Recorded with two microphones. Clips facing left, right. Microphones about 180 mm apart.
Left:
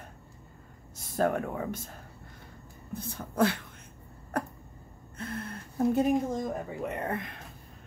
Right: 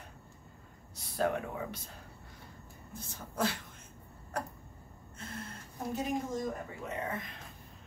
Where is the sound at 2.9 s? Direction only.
60° left (ahead or behind).